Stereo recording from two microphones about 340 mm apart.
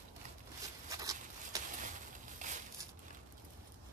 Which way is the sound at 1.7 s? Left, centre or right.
Right.